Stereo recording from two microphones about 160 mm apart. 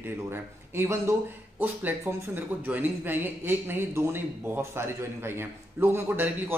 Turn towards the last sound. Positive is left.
turn(degrees=-15)  # may be behind; listen again after turning